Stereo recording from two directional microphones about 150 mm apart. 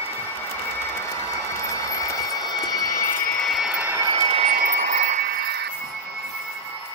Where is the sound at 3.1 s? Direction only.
65° left (ahead or behind).